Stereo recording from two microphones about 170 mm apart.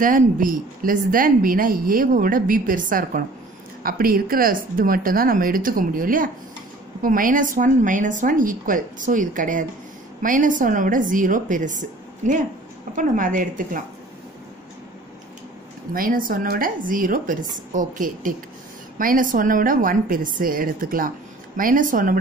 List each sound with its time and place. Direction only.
0.0 s a woman's voice: 50° right (ahead or behind)
15.9 s a woman's voice: 55° right (ahead or behind)